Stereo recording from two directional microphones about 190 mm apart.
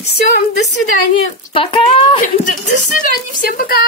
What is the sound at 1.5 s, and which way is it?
Speech, 30° left (ahead or behind).